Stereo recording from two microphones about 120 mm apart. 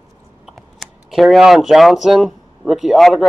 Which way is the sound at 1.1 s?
Centre (ahead or behind).